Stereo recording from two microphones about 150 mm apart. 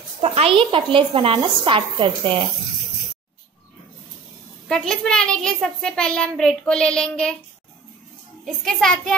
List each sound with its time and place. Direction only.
0.2 s a woman's voice: 40° right (ahead or behind)
4.6 s a child's voice: 5° left (ahead or behind)
8.6 s a child's voice: 5° left (ahead or behind)